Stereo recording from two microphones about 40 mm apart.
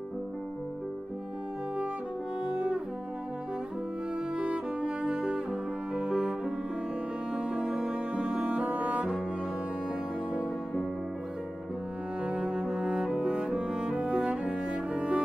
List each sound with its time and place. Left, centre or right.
2.5 s brass instrument: right
4.4 s cello: right
7.3 s music: right
8.6 s cello: right
12.2 s cello: right